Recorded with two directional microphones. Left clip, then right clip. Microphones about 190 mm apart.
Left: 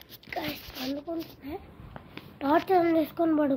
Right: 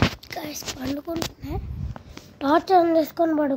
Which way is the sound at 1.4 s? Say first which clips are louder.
Right 5 dB; 40° right (ahead or behind).